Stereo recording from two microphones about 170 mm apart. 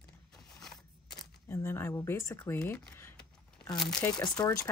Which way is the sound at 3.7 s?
Centre (ahead or behind).